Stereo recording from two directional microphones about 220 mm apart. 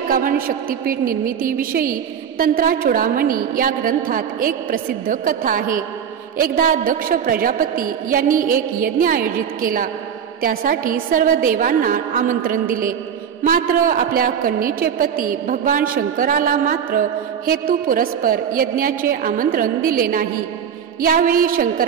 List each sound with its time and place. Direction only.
0.1 s a woman's voice: 40° right (ahead or behind)